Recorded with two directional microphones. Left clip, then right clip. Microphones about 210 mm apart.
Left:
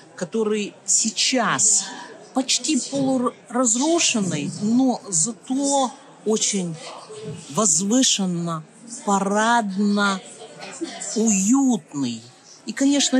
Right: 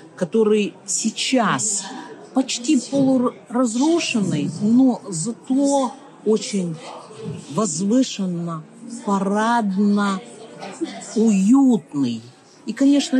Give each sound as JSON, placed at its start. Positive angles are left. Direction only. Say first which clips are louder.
{"t": 0.2, "sound": "a woman's voice", "louder": "right 6 dB", "side_deg": 0}
{"t": 11.2, "sound": "a woman's voice", "louder": "right 4 dB", "side_deg": 15}